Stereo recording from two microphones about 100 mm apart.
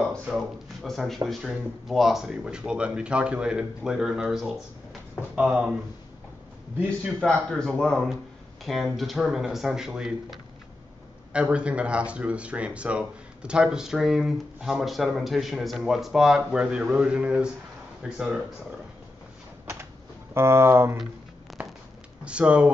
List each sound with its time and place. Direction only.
0.8 s speech: centre (ahead or behind)
7.4 s speech: 5° left (ahead or behind)
19.6 s a sound: 25° right (ahead or behind)
20.3 s speech: 25° right (ahead or behind)
21.5 s a sound: centre (ahead or behind)
22.2 s speech: 10° right (ahead or behind)